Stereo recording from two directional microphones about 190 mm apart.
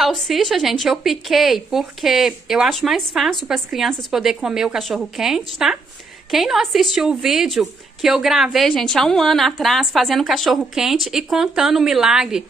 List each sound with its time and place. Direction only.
0.0 s a woman's voice: centre (ahead or behind)